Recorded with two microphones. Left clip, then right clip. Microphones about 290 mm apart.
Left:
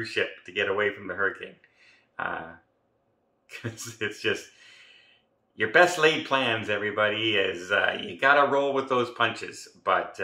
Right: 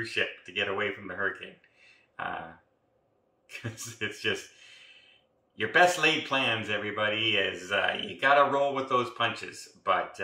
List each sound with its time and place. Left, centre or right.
0.0 s speech: centre
3.4 s speech: centre